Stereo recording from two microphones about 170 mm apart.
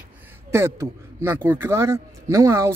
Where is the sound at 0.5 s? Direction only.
15° right (ahead or behind).